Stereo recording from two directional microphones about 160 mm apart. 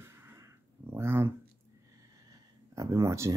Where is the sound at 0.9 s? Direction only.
15° right (ahead or behind).